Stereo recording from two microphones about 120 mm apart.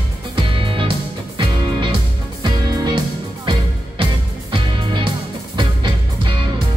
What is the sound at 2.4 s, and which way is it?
Music, 40° right (ahead or behind).